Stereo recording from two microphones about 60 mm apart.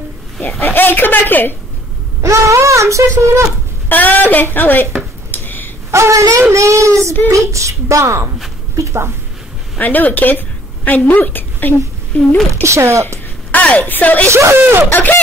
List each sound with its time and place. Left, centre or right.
0.4 s speech: left
2.2 s a sound: right
3.9 s speech: left
5.3 s a sound: left
5.9 s a woman's voice: right
9.8 s a woman's voice: left
12.6 s speech: right
13.5 s a woman's voice: left
14.5 s speech: right
14.9 s speech: left